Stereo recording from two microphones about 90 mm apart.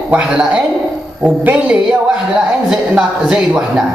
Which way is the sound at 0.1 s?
15° right (ahead or behind).